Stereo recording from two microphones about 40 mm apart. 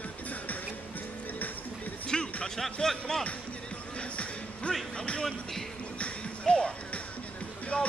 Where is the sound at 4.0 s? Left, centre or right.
Left.